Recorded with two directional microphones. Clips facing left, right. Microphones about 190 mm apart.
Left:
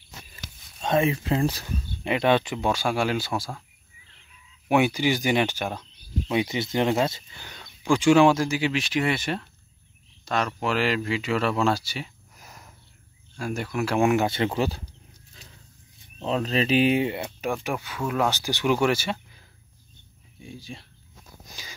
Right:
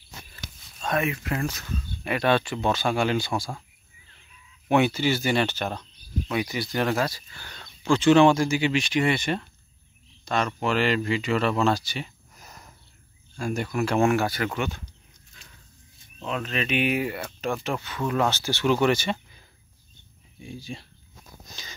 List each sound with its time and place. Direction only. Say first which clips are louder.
0.7 s speech: left 4 dB; 25° left (ahead or behind)
2.0 s speech: left 1 dB; 20° left (ahead or behind); by 3.6 s centre (ahead or behind)
4.6 s speech: even; 10° left (ahead or behind)
6.2 s speech: left 3 dB; 25° left (ahead or behind); by 14.0 s 5° left (ahead or behind)
14.0 s speech: left 1 dB; 20° left (ahead or behind)
16.2 s speech: left 5 dB; 35° left (ahead or behind); by 20.8 s centre (ahead or behind)
21.5 s sniff: left 1 dB; 10° left (ahead or behind)